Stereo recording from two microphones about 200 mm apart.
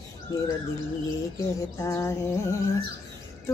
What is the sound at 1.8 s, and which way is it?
Music, 15° left (ahead or behind).